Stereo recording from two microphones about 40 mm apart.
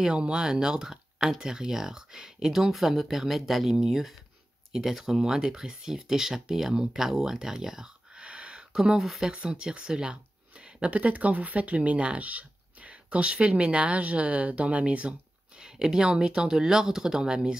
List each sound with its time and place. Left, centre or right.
0.0 s speech: right
8.7 s speech: centre
15.6 s speech: centre